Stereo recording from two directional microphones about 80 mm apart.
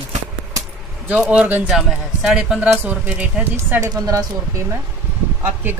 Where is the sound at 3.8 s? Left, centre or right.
Right.